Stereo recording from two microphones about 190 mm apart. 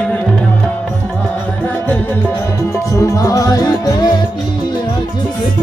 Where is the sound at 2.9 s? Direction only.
15° left (ahead or behind).